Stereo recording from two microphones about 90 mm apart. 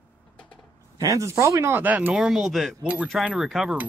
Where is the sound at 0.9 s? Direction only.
40° right (ahead or behind).